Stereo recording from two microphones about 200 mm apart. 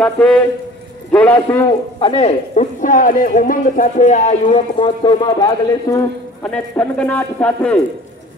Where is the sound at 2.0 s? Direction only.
30° left (ahead or behind).